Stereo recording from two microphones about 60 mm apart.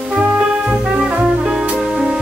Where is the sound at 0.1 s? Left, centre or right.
Centre.